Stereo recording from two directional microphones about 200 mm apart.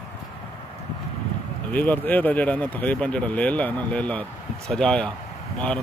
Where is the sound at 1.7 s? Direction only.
10° left (ahead or behind).